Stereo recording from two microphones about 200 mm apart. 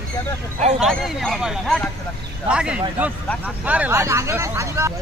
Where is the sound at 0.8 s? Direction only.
Centre (ahead or behind); by 4.9 s 15° right (ahead or behind).